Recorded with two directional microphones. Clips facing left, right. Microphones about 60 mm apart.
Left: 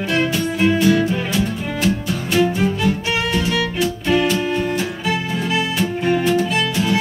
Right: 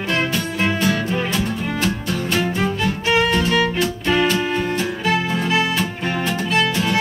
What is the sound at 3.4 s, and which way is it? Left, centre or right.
Music, right.